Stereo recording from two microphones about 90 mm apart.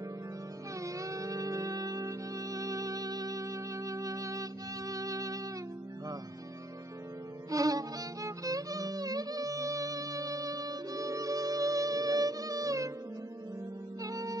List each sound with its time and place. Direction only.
0.8 s music: 40° right (ahead or behind)
7.5 s music: 40° right (ahead or behind)
14.0 s music: 40° right (ahead or behind)